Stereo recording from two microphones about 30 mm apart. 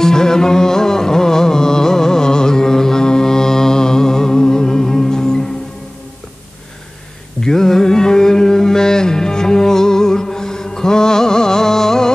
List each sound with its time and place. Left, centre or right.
0.0 s music: centre
7.4 s carnatic music: centre